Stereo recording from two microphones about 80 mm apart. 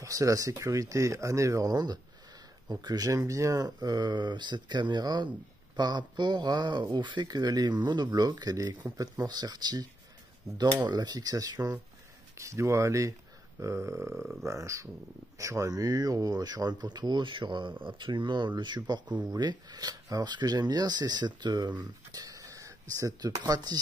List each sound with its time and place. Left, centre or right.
0.0 s speech: right
10.9 s speech: right
12.4 s speech: right
17.8 s speech: right